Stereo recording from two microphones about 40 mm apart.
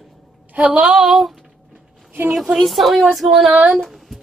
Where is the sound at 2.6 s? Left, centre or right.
Centre.